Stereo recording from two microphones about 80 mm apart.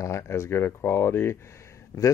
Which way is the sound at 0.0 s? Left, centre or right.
Left.